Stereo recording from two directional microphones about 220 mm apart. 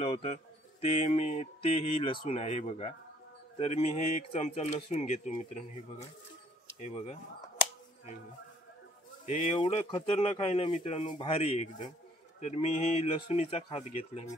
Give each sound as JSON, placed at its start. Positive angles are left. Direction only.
{"t": 0.0, "sound": "speech", "side_deg": 30}
{"t": 6.8, "sound": "speech", "side_deg": 30}
{"t": 9.2, "sound": "speech", "side_deg": 25}